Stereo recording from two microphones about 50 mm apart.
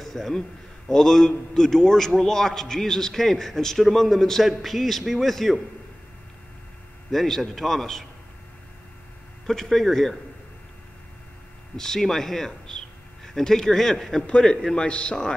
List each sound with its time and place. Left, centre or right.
0.0 s a man's voice: centre
7.1 s a man's voice: centre
9.5 s a man's voice: centre
11.7 s a man's voice: centre